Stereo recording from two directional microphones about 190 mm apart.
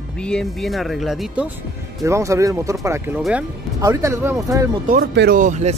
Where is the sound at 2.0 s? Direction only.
15° right (ahead or behind).